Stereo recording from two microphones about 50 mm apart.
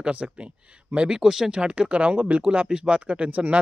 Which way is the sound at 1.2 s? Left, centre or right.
Centre.